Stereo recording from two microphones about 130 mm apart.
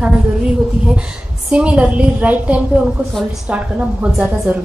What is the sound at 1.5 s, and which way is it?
A woman's voice, 10° right (ahead or behind).